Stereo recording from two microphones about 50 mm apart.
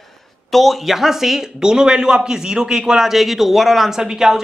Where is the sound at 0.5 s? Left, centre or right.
Centre.